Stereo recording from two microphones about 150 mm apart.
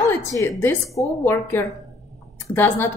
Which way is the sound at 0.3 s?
15° left (ahead or behind).